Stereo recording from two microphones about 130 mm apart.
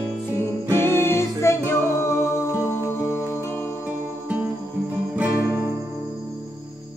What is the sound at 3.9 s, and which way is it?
Music, 15° right (ahead or behind).